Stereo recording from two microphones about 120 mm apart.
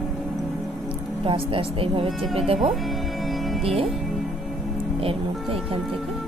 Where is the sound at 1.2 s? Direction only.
50° right (ahead or behind).